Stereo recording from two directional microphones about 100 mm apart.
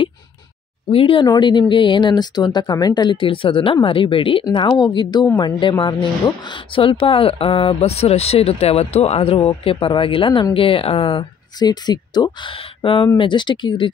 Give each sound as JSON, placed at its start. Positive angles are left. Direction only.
{"t": 0.8, "sound": "a woman's voice", "side_deg": 60}
{"t": 1.2, "sound": "a woman's voice", "side_deg": 45}
{"t": 4.5, "sound": "a woman's voice", "side_deg": 45}
{"t": 11.6, "sound": "a woman's voice", "side_deg": 45}
{"t": 12.8, "sound": "a woman's voice", "side_deg": 60}